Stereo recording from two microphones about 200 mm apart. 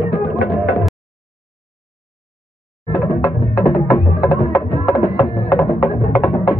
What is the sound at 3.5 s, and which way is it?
Music, 5° left (ahead or behind).